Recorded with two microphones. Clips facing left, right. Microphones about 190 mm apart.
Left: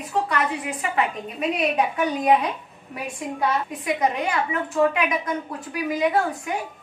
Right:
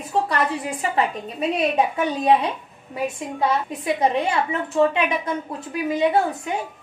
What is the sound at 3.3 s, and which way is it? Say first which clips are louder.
A woman's voice: right 1 dB; 30° right (ahead or behind).